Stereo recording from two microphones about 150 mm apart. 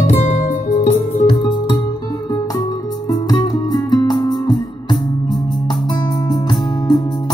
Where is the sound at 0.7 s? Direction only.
40° left (ahead or behind).